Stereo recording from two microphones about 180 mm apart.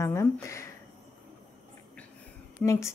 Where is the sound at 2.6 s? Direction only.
15° left (ahead or behind).